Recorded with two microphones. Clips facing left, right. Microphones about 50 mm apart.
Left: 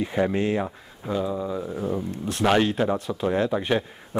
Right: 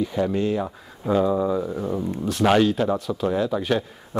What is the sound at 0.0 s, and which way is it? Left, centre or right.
Speech, left.